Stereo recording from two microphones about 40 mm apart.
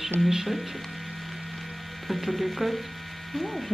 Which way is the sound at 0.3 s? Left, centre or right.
Centre.